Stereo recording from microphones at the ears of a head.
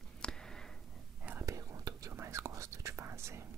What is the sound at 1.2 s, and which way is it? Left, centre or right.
Whispering, right.